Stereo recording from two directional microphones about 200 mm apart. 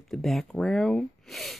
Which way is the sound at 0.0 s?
Centre (ahead or behind).